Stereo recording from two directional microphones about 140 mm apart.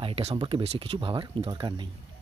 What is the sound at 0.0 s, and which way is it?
Speech, 45° right (ahead or behind).